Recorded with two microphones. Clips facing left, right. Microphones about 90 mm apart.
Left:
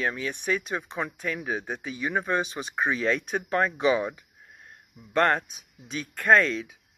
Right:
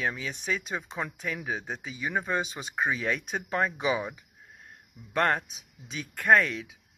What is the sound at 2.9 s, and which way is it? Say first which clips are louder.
Speech: left 4 dB; 65° left (ahead or behind).